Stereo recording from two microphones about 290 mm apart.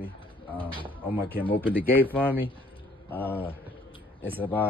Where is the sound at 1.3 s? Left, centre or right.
Centre.